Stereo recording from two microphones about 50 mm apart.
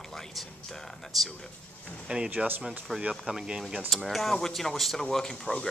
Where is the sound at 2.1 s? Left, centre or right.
Right.